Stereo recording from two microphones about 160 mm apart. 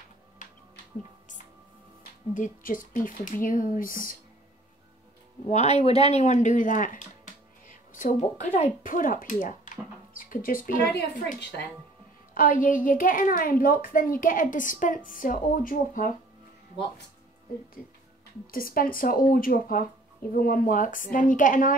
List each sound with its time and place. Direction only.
0.4 s music: 55° left (ahead or behind)
2.3 s a woman's voice: 55° left (ahead or behind)
5.5 s a woman's voice: 45° left (ahead or behind); by 11.6 s 90° left
12.4 s a woman's voice: 55° left (ahead or behind)
18.5 s a woman's voice: 65° left (ahead or behind)